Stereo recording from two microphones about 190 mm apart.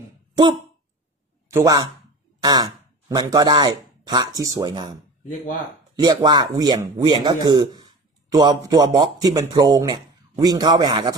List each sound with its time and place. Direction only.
1.5 s speech: 20° right (ahead or behind)
5.9 s a man's voice: 20° right (ahead or behind)